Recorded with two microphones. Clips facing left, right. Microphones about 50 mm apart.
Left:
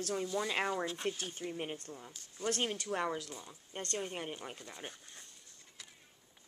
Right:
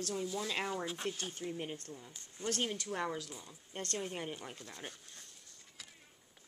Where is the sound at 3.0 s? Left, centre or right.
Centre.